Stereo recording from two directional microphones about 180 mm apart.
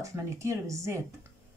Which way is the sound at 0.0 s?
15° right (ahead or behind).